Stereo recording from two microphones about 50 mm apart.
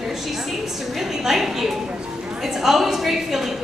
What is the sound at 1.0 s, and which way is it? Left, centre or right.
A woman's voice, centre.